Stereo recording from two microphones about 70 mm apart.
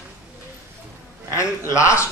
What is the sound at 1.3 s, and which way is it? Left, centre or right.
Speech, left.